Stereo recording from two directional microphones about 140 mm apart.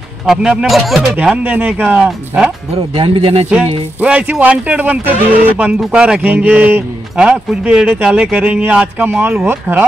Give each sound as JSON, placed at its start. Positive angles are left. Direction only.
{"t": 0.3, "sound": "a man's voice", "side_deg": -5}
{"t": 1.1, "sound": "a man's voice", "side_deg": -10}
{"t": 2.7, "sound": "speech", "side_deg": -45}
{"t": 3.4, "sound": "a man's voice", "side_deg": -10}